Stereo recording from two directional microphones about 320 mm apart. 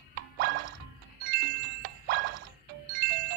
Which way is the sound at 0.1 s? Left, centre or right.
Right.